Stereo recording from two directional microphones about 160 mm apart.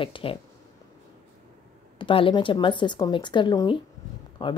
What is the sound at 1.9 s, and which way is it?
A woman's voice, 30° left (ahead or behind).